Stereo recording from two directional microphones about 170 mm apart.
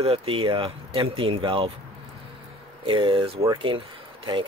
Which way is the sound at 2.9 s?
30° right (ahead or behind).